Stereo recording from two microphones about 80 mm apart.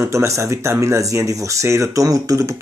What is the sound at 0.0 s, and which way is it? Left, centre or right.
Speech, right.